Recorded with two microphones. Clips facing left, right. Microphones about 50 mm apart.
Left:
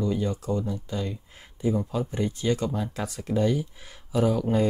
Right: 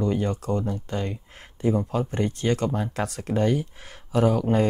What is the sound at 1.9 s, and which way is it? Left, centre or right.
Speech, right.